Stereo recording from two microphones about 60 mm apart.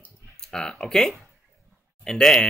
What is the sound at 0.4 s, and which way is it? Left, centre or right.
Speech, centre.